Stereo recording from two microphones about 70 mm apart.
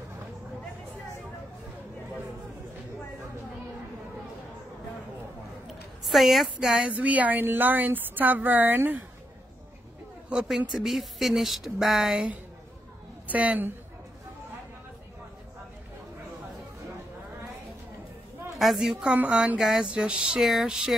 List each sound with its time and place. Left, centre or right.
5.7 s a sound: centre
6.9 s a woman's voice: right
10.7 s speech: centre
13.3 s a woman's voice: right
18.6 s speech: centre
19.3 s a sound: centre